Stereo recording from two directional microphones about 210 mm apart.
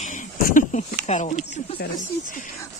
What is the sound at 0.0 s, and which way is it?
Speech, 35° left (ahead or behind).